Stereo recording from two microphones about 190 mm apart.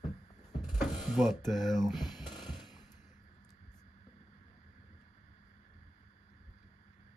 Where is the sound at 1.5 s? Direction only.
Centre (ahead or behind).